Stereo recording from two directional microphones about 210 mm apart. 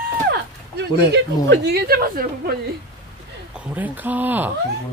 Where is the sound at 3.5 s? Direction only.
5° right (ahead or behind).